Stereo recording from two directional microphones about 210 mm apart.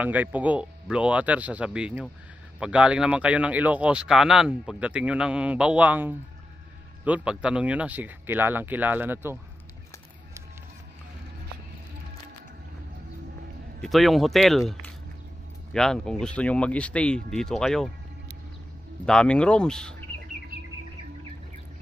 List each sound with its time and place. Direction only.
0.0 s speech: 5° right (ahead or behind)
13.7 s speech: centre (ahead or behind)
15.7 s speech: 5° left (ahead or behind)
19.0 s speech: 5° left (ahead or behind)